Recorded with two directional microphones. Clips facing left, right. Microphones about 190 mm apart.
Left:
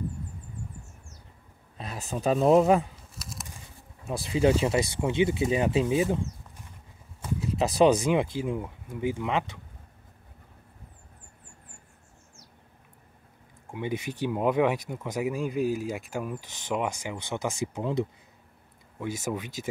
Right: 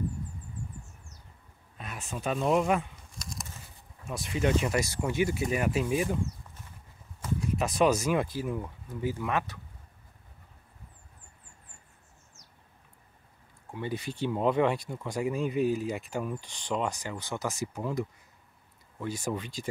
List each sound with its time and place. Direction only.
1.8 s speech: 35° left (ahead or behind)
3.1 s a sound: 5° left (ahead or behind)
4.1 s speech: 30° left (ahead or behind)
7.3 s speech: 30° left (ahead or behind)
13.7 s speech: 15° left (ahead or behind)
18.9 s speech: 10° left (ahead or behind)